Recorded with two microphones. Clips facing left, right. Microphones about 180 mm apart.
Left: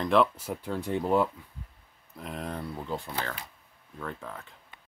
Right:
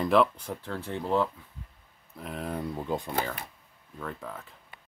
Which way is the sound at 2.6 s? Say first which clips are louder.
Right 3 dB; 20° right (ahead or behind).